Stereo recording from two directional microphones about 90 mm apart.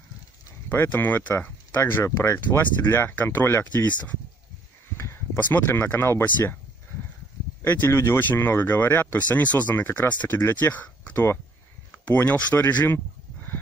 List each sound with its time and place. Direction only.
0.7 s speech: 20° left (ahead or behind)
4.9 s a sound: 30° left (ahead or behind)
5.4 s speech: 20° left (ahead or behind)
7.6 s speech: 25° left (ahead or behind)